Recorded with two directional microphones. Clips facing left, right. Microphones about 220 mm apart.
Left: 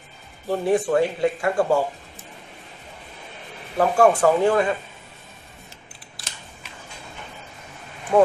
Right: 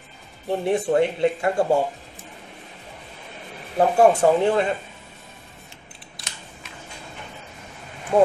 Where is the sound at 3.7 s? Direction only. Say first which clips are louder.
Right 1 dB; 25° right (ahead or behind).